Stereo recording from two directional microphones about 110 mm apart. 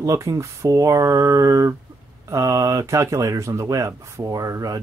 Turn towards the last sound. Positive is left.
turn(degrees=-30)  # may be behind; listen again after turning